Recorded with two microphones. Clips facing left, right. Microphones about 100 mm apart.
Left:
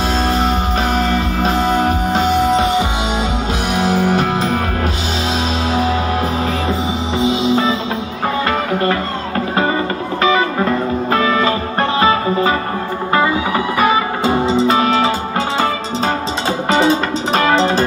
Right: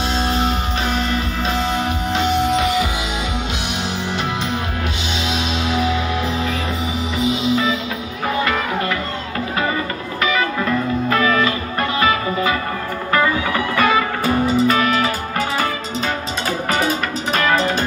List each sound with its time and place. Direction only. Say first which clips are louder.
0.2 s music: left 4 dB; 40° left (ahead or behind)
3.7 s music: left 12 dB; 45° left (ahead or behind)
5.7 s music: left 2 dB; 35° left (ahead or behind)
7.2 s music: left 4 dB; 30° left (ahead or behind)
10.2 s music: left 5 dB; 35° left (ahead or behind)
16.7 s music: left 8 dB; 30° left (ahead or behind)